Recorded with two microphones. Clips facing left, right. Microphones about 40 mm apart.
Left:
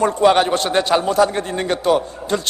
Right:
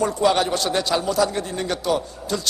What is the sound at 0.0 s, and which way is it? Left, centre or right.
A man's voice, left.